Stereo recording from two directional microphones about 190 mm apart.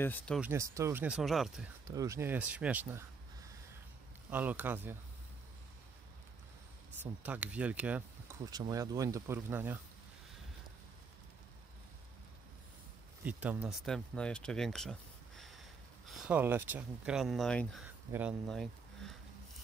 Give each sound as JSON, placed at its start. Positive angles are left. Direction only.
{"t": 0.0, "sound": "speech", "side_deg": 5}
{"t": 0.4, "sound": "speech", "side_deg": -15}
{"t": 1.9, "sound": "speech", "side_deg": -15}
{"t": 4.3, "sound": "speech", "side_deg": -10}
{"t": 7.0, "sound": "speech", "side_deg": -10}
{"t": 8.5, "sound": "speech", "side_deg": -20}
{"t": 13.2, "sound": "speech", "side_deg": -10}
{"t": 18.1, "sound": "speech", "side_deg": -15}
{"t": 18.5, "sound": "a sound", "side_deg": 0}